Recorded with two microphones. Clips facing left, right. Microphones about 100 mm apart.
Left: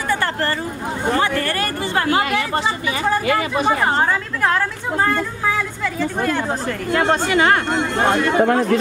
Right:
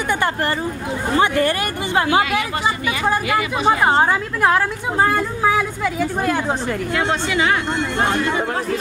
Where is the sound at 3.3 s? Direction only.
40° left (ahead or behind).